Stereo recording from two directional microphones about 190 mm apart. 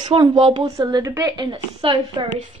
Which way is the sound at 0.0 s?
25° right (ahead or behind).